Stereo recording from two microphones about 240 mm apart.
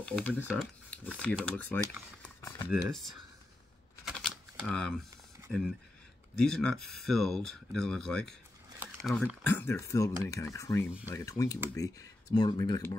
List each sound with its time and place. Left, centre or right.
0.0 s speech: centre
4.0 s a sound: centre
5.5 s speech: centre